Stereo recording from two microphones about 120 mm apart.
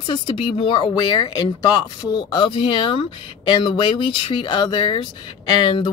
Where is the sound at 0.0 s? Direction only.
40° left (ahead or behind).